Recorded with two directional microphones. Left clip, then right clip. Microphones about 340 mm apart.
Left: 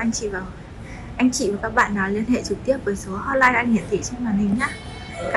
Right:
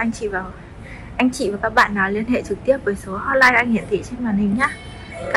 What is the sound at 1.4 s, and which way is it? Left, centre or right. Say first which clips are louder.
A woman's voice: right 5 dB; centre.